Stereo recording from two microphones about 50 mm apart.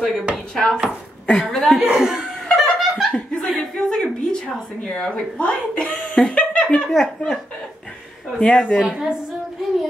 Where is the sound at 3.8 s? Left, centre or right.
Centre.